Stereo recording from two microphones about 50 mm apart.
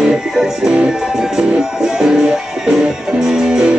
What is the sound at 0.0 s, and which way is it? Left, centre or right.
Music, centre.